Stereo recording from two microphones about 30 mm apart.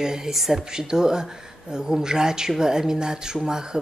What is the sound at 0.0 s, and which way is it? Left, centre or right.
Speech, right.